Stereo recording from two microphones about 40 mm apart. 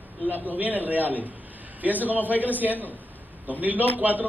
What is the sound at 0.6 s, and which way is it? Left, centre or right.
A man's voice, right.